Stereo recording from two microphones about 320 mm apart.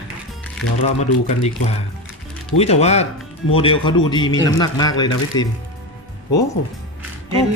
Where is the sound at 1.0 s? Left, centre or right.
Centre.